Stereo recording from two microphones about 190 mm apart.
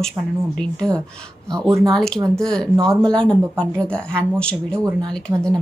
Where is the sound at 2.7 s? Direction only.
20° right (ahead or behind).